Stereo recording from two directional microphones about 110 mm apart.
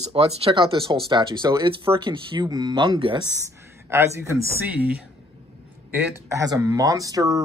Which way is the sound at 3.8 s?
25° right (ahead or behind).